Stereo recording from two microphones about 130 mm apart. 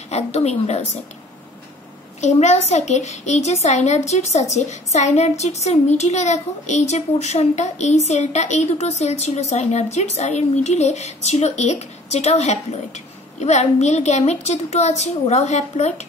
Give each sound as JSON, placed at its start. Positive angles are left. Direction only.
{"t": 0.1, "sound": "a child's voice", "side_deg": 55}
{"t": 2.2, "sound": "a child's voice", "side_deg": 60}